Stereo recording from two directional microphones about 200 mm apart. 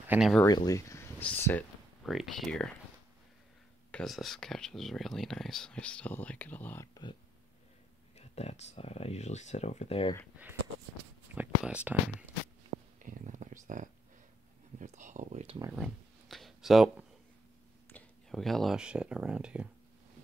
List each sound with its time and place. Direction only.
0.1 s speech: centre (ahead or behind)
0.4 s speech: 20° left (ahead or behind); by 2.7 s centre (ahead or behind)
3.9 s speech: centre (ahead or behind); by 7.2 s 20° left (ahead or behind)
8.2 s speech: 35° left (ahead or behind)
11.3 s speech: 5° right (ahead or behind)
12.7 s a sound: 40° right (ahead or behind)
14.8 s speech: 40° right (ahead or behind)
15.7 s speech: centre (ahead or behind)